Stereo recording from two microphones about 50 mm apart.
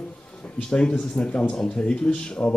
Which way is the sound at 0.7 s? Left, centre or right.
Centre.